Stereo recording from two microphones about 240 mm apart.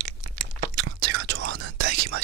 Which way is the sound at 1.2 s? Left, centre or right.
Right.